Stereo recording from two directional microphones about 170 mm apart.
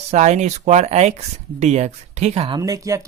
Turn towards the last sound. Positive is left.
turn(degrees=-20)  # may be behind; listen again after turning